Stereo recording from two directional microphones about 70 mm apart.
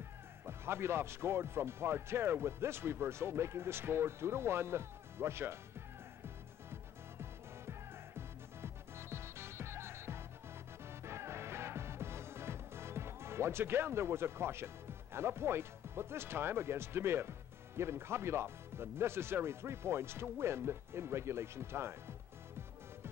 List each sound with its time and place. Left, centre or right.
0.5 s speech: right
6.2 s music: right